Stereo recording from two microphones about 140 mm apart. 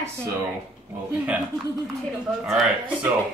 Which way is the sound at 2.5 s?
Centre (ahead or behind).